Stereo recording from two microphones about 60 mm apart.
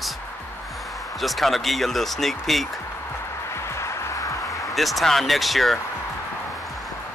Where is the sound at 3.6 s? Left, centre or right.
Left.